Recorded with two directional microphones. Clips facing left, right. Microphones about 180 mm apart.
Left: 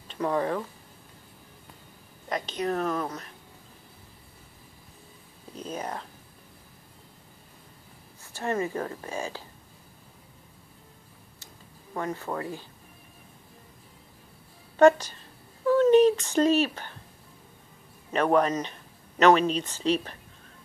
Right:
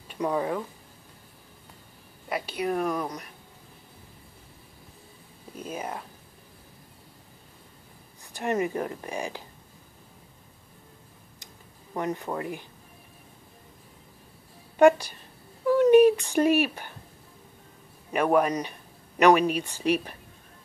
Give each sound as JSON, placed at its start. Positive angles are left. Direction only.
{"t": 0.1, "sound": "speech", "side_deg": -10}
{"t": 2.2, "sound": "a woman's voice", "side_deg": -10}
{"t": 5.5, "sound": "a woman's voice", "side_deg": -10}
{"t": 8.2, "sound": "a woman's voice", "side_deg": -15}
{"t": 11.9, "sound": "a woman's voice", "side_deg": -20}
{"t": 14.8, "sound": "a sound", "side_deg": -15}
{"t": 18.1, "sound": "speech", "side_deg": -10}